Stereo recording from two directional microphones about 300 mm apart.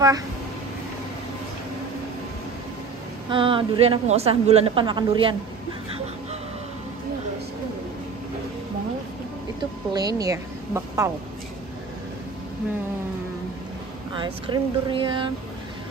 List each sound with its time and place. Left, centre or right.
3.3 s a woman's voice: centre
9.9 s a woman's voice: centre
14.1 s a woman's voice: centre